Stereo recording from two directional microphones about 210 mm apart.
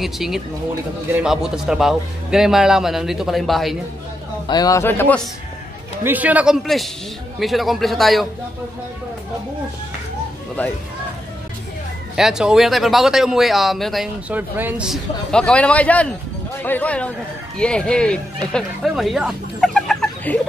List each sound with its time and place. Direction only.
0.0 s speech: centre (ahead or behind)
4.5 s speech: 20° left (ahead or behind)
6.0 s speech: 5° right (ahead or behind)
12.2 s speech: centre (ahead or behind)